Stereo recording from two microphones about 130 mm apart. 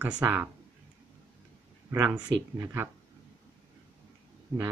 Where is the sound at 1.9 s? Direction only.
15° right (ahead or behind).